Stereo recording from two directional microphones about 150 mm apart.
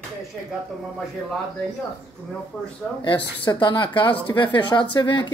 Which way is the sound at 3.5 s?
30° left (ahead or behind).